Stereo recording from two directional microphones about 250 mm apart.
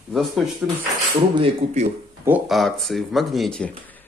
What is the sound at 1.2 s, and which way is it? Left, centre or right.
Speech, right.